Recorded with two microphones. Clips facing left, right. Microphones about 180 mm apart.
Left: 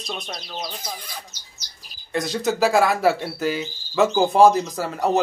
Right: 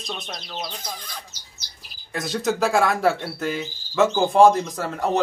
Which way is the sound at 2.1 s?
Centre (ahead or behind).